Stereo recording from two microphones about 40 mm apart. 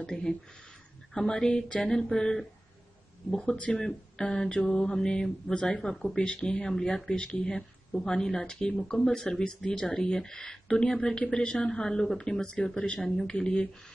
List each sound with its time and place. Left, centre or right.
0.0 s speech: centre
2.0 s speech: centre
6.1 s speech: left
9.7 s speech: left
13.0 s speech: centre